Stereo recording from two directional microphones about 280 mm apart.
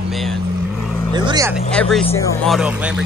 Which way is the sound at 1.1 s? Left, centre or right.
Centre.